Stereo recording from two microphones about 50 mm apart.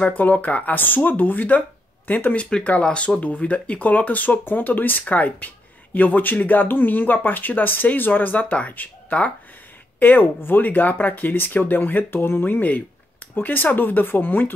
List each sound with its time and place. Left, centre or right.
0.0 s speech: left
2.8 s speech: left
9.9 s speech: left